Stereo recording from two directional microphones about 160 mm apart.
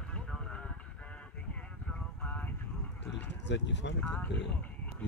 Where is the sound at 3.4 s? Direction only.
90° left.